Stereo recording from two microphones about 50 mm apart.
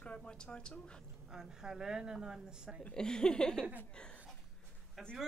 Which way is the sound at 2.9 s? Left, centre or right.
Centre.